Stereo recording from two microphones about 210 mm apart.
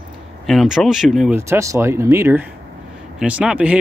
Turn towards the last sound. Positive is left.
turn(degrees=-5)  # may be behind; listen again after turning